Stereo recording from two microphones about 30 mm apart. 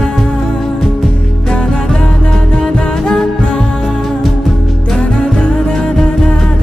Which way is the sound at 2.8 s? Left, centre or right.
Left.